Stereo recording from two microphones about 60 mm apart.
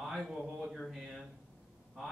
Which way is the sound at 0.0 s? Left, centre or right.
Centre.